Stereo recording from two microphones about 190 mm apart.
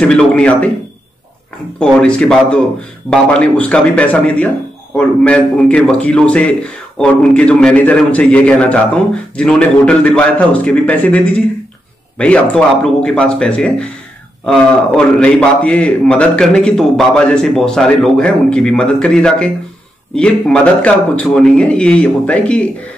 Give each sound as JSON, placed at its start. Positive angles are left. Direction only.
{"t": 0.0, "sound": "a man's voice", "side_deg": 5}
{"t": 1.8, "sound": "a man's voice", "side_deg": 5}